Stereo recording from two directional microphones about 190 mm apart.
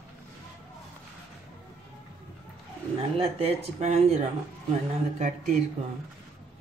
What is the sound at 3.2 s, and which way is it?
A man's voice, 30° right (ahead or behind).